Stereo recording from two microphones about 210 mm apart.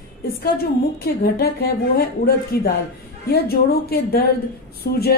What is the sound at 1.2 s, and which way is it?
Speech, 45° left (ahead or behind).